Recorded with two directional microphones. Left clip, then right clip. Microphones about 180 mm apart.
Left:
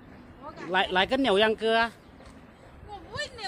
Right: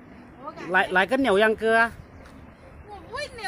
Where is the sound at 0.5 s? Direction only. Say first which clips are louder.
Right 4 dB; 15° right (ahead or behind).